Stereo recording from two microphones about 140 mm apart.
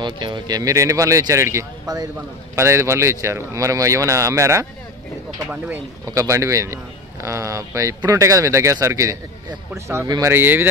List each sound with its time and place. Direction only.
0.0 s speech: 35° right (ahead or behind)
6.0 s speech: 20° right (ahead or behind)
10.3 s speech: 15° right (ahead or behind)